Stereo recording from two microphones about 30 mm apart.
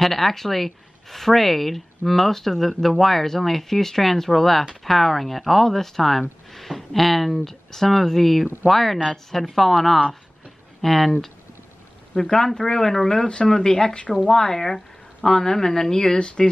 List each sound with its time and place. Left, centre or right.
0.0 s speech: centre
13.1 s speech: left
16.2 s speech: left